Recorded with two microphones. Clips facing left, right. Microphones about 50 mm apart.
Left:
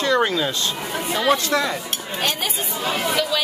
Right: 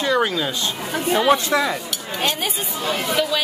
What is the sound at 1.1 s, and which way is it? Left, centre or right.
Speech, centre.